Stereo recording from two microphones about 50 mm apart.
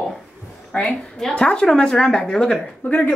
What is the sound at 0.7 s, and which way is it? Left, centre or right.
A woman's voice, left.